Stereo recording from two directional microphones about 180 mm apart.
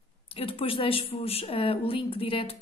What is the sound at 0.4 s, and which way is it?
Speech, 30° left (ahead or behind).